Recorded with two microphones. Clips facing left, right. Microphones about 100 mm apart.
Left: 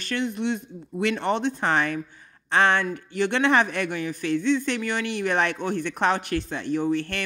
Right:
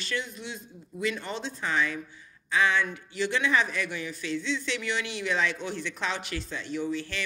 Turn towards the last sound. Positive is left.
turn(degrees=55)  # may be behind; listen again after turning